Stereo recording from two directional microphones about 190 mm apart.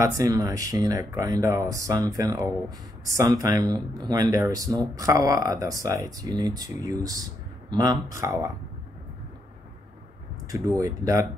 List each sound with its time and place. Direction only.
0.0 s speech: 20° right (ahead or behind)
10.4 s speech: 15° right (ahead or behind)